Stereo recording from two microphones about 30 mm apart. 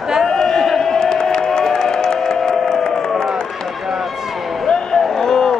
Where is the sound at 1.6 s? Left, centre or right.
Centre.